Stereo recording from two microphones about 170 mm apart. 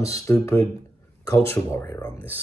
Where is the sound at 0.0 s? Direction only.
15° left (ahead or behind).